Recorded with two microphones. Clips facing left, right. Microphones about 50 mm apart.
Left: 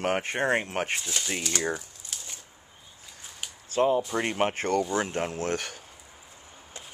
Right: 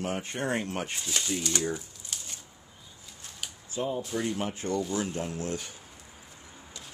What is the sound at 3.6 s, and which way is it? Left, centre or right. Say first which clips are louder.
Speech: left 8 dB; left.